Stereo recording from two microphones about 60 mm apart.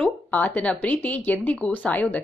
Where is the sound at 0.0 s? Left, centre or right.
Left.